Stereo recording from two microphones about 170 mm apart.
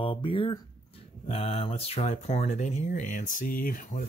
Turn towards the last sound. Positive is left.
turn(degrees=50)  # may be behind; listen again after turning